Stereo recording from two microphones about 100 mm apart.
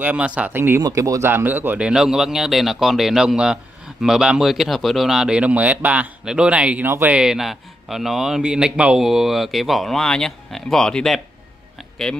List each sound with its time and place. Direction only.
0.0 s speech: 15° right (ahead or behind)
0.8 s speech: 35° right (ahead or behind)
1.3 s speech: 20° right (ahead or behind)
1.9 s a man's voice: 5° right (ahead or behind)